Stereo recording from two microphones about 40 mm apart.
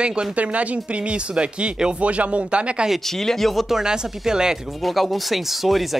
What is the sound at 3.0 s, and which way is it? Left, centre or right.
Speech, centre.